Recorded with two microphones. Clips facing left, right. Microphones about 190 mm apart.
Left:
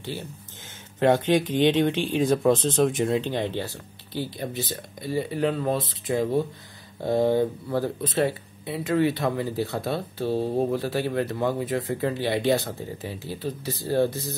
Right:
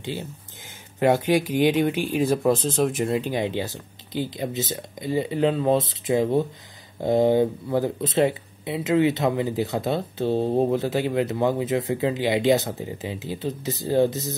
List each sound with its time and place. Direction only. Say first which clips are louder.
0.0 s speech: right 3 dB; 20° right (ahead or behind)